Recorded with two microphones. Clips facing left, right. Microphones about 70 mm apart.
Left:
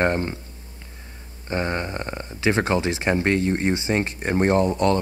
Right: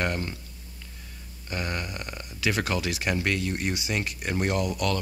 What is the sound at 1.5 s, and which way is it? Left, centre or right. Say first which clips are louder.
Speech: left 7 dB; left.